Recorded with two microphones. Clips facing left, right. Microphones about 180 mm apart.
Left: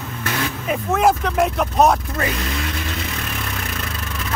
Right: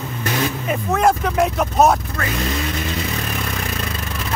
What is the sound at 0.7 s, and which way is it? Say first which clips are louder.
Vehicle: left 1 dB; centre (ahead or behind).